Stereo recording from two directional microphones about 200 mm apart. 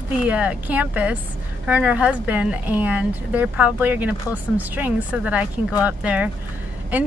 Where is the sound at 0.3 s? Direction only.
5° right (ahead or behind).